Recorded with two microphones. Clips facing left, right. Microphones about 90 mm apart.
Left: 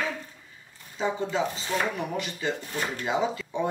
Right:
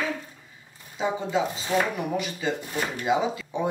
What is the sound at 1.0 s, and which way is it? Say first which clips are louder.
Speech: right 1 dB; 15° right (ahead or behind).